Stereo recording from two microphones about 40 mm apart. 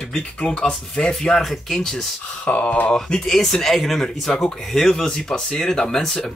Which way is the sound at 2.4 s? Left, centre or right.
Left.